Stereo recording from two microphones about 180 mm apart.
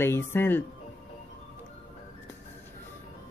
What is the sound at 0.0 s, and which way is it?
Speech, 10° left (ahead or behind).